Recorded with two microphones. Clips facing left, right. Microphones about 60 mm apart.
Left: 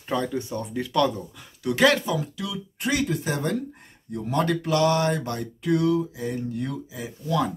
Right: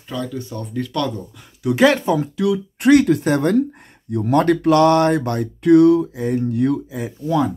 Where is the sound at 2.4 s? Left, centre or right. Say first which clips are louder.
Right 18 dB; right.